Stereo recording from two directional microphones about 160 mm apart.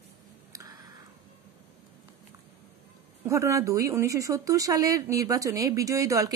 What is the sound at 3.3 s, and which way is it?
Speech, 20° right (ahead or behind).